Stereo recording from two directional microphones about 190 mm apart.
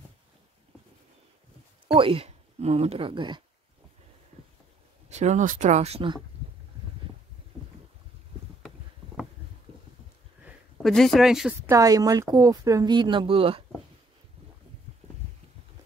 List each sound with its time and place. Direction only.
2.0 s speech: 30° right (ahead or behind)
5.1 s speech: 40° right (ahead or behind)
10.4 s speech: centre (ahead or behind)
11.7 s speech: 20° right (ahead or behind)